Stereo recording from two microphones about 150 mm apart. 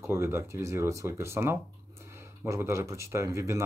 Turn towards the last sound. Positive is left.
turn(degrees=-20)  # may be behind; listen again after turning